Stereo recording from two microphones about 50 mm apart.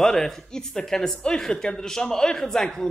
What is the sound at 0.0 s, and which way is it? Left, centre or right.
A man's voice, centre.